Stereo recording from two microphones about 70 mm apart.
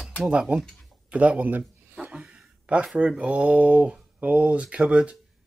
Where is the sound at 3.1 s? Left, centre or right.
Centre.